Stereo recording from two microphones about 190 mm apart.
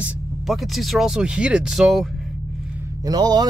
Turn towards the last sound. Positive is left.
turn(degrees=-20)  # may be behind; listen again after turning